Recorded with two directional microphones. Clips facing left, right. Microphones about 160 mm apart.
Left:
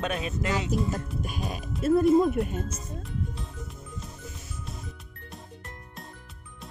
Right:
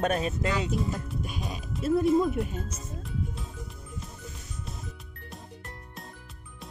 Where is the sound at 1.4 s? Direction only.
55° left (ahead or behind).